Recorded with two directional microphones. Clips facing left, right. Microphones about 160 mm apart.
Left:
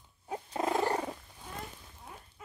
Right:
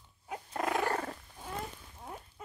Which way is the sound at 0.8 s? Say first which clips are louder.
Left 2 dB; 15° left (ahead or behind).